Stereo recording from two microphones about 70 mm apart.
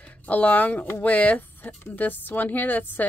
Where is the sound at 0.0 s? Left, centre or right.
Left.